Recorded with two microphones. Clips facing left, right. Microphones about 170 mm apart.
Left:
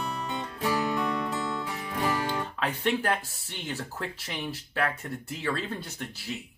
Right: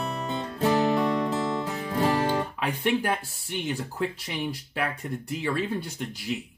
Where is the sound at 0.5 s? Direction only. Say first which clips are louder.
Right 6 dB; 30° right (ahead or behind).